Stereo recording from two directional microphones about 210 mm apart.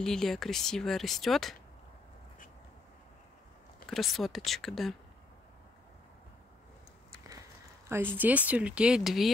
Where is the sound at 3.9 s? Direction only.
Centre (ahead or behind).